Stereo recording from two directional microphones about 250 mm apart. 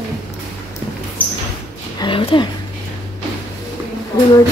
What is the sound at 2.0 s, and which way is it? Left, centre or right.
Speech, centre.